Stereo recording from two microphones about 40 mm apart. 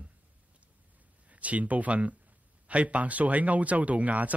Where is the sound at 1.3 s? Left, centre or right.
Right.